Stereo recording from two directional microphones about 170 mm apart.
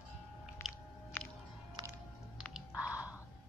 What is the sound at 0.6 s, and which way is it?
Chewing, 15° left (ahead or behind).